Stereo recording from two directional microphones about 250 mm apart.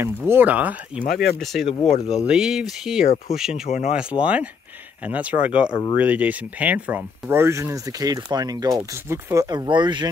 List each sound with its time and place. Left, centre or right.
0.0 s speech: centre
1.7 s speech: left
2.2 s speech: centre
3.6 s speech: left
3.9 s speech: centre
5.7 s speech: centre
5.9 s speech: centre